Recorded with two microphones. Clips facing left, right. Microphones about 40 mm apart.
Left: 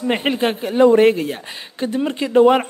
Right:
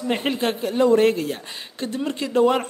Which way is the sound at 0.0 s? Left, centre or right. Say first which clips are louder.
Left 4 dB; left.